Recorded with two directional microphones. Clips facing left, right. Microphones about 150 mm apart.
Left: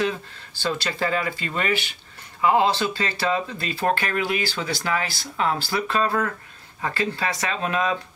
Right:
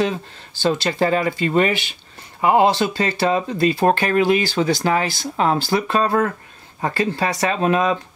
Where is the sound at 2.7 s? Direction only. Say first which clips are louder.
Right 5 dB; 40° right (ahead or behind).